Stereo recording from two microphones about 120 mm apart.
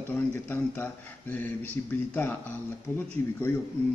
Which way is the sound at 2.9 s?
20° left (ahead or behind).